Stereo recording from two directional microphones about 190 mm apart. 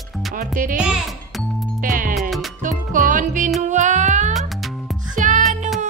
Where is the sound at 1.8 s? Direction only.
45° right (ahead or behind).